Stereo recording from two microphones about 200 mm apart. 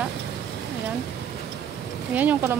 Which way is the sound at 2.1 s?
10° right (ahead or behind).